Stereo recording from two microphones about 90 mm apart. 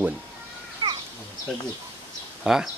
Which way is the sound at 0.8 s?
80° right.